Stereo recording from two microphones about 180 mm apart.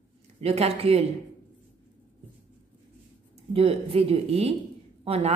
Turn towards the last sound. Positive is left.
turn(degrees=-35)  # may be behind; listen again after turning